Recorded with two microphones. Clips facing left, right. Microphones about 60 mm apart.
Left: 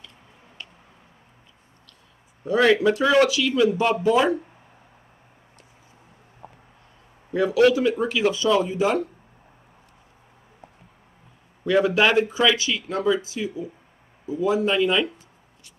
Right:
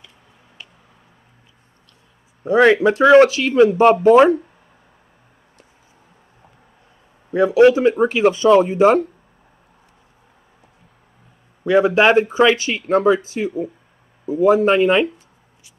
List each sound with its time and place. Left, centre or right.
2.4 s speech: right
7.3 s speech: right
11.6 s speech: right